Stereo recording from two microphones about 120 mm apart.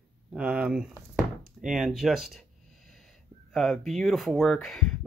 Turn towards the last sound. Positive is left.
turn(degrees=0)  # may be behind; listen again after turning